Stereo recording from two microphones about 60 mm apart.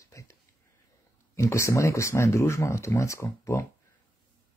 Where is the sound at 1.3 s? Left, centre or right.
Left.